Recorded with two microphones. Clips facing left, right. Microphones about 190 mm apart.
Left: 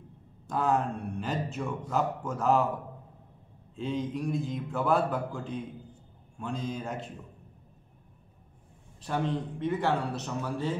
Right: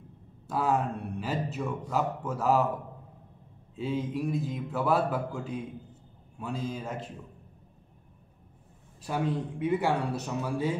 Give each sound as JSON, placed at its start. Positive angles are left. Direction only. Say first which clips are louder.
{"t": 0.5, "sound": "speech", "louder": "even", "side_deg": -5}
{"t": 3.7, "sound": "speech", "louder": "right 1 dB", "side_deg": -5}
{"t": 9.0, "sound": "speech", "louder": "even", "side_deg": -10}